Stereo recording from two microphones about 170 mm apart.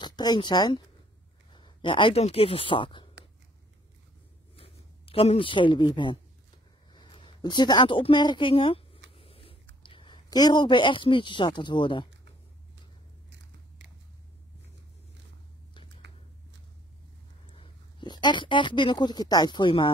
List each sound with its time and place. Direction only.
0.0 s speech: 25° left (ahead or behind)
4.6 s speech: 35° left (ahead or behind)
9.1 s a sound: 35° left (ahead or behind)
9.8 s speech: 30° left (ahead or behind)
17.5 s speech: 30° left (ahead or behind)